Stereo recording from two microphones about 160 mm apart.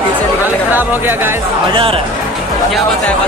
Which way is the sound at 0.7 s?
10° right (ahead or behind).